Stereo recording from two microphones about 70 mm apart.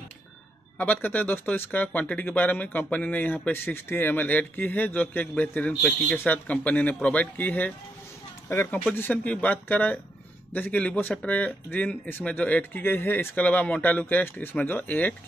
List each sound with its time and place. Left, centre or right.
0.7 s a man's voice: left
8.5 s a man's voice: left